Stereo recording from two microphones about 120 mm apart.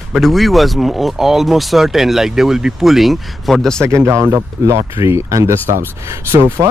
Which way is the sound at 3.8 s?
25° right (ahead or behind).